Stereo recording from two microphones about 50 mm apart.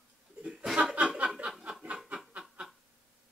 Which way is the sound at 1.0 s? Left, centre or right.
Right.